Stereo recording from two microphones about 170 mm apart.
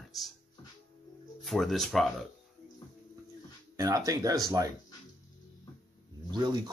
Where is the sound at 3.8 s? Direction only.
20° right (ahead or behind).